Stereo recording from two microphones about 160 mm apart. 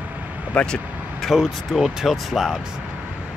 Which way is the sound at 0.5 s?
5° left (ahead or behind).